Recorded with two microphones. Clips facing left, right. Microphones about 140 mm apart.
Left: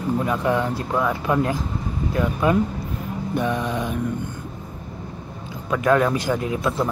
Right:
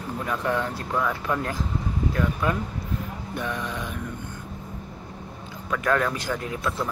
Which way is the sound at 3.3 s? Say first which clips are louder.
Left 7 dB; 20° left (ahead or behind).